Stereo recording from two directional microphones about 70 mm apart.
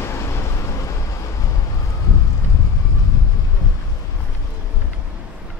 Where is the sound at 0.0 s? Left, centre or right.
Left.